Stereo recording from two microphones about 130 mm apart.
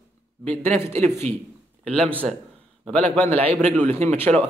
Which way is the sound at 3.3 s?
50° right (ahead or behind).